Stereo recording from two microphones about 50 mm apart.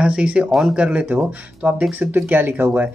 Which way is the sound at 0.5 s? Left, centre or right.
Centre.